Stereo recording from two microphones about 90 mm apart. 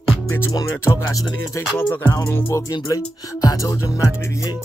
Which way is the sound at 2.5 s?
40° left (ahead or behind).